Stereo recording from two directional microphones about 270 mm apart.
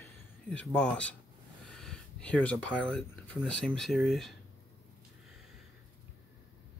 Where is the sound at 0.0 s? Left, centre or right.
Centre.